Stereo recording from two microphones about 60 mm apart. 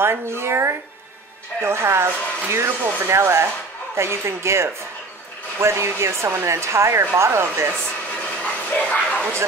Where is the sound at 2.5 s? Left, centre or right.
Right.